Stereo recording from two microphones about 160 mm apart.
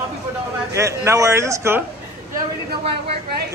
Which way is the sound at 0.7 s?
20° right (ahead or behind).